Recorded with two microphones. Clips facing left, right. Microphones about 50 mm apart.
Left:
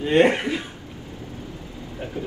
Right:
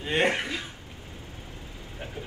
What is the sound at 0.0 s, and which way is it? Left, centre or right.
Speech, centre.